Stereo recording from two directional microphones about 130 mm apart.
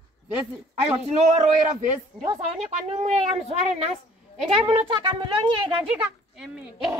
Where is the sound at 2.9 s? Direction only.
55° right (ahead or behind).